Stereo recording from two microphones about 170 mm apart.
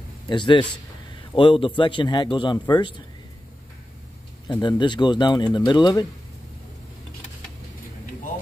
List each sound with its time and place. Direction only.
0.3 s a man's voice: 30° left (ahead or behind)
4.5 s speech: 25° left (ahead or behind)